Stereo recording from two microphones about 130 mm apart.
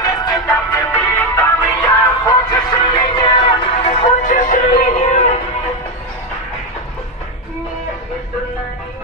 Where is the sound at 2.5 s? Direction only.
35° left (ahead or behind); by 4.1 s 50° left (ahead or behind).